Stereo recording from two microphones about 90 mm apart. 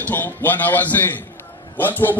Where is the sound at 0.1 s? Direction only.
20° left (ahead or behind).